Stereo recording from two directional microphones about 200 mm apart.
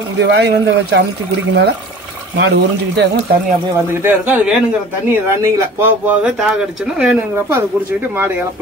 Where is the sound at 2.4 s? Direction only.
60° right (ahead or behind).